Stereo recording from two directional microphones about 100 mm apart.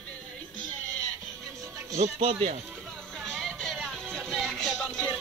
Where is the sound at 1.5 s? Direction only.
30° right (ahead or behind).